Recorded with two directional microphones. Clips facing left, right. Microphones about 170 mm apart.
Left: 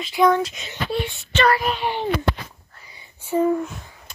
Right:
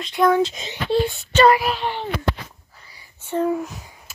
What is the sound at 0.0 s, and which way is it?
Speech, centre (ahead or behind).